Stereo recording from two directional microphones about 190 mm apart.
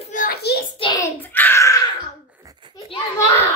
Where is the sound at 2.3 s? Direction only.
15° right (ahead or behind).